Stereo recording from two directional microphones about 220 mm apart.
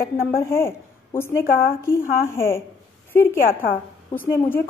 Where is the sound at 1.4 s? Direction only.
40° left (ahead or behind).